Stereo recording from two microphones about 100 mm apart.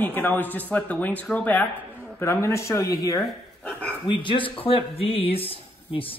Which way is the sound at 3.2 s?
10° left (ahead or behind).